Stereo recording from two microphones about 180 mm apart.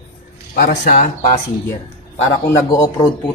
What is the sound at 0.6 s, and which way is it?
Speech, 50° left (ahead or behind).